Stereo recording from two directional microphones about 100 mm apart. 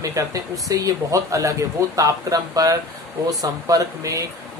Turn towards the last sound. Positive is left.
turn(degrees=-35)  # may be behind; listen again after turning